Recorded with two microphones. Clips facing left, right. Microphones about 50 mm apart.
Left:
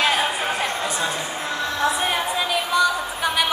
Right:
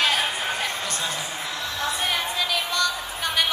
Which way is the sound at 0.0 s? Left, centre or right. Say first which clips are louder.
Left 3 dB; centre.